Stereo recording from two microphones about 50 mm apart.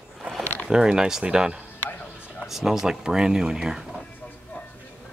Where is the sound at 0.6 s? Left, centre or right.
Centre.